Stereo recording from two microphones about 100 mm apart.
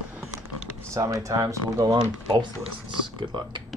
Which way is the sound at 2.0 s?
55° right (ahead or behind).